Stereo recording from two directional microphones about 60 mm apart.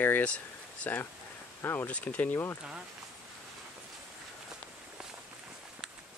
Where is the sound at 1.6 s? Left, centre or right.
Left.